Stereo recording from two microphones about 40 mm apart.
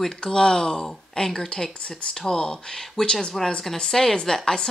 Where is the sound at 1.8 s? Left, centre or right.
Left.